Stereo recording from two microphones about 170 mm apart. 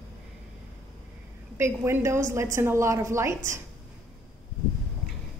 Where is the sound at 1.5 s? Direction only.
15° right (ahead or behind).